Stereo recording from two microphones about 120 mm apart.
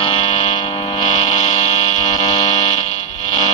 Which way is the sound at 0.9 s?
75° left (ahead or behind).